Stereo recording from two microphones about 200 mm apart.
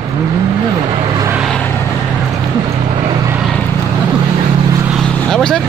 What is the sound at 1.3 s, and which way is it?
Vehicle, centre (ahead or behind).